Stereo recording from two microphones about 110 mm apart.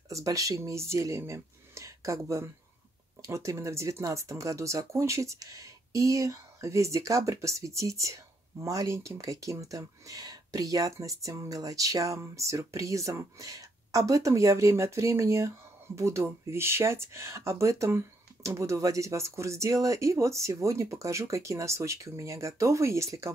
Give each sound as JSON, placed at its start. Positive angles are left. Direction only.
{"t": 0.1, "sound": "speech", "side_deg": -30}